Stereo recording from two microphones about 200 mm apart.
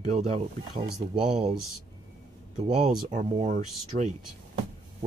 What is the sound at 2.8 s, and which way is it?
Speech, 35° right (ahead or behind).